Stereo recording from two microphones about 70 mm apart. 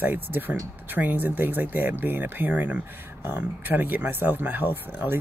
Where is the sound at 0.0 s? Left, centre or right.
Right.